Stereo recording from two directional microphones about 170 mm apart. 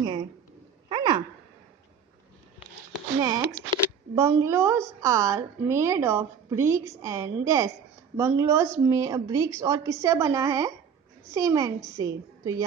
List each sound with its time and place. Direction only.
0.0 s dog: 25° right (ahead or behind)
0.8 s a sound: 25° right (ahead or behind)
3.2 s a woman's voice: 20° right (ahead or behind)